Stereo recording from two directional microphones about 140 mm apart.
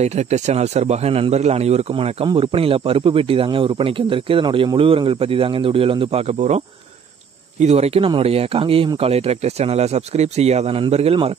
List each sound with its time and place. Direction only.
0.0 s speech: 55° right (ahead or behind)
7.6 s speech: 50° right (ahead or behind)